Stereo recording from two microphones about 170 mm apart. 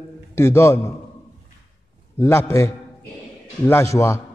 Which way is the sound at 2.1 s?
15° left (ahead or behind).